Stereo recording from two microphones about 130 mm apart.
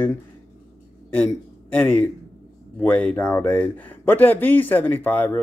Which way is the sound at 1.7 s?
10° left (ahead or behind).